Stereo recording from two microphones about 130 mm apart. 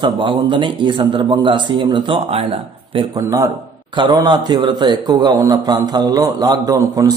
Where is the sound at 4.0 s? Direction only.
35° right (ahead or behind).